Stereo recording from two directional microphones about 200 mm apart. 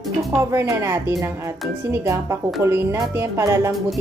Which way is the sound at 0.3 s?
15° right (ahead or behind).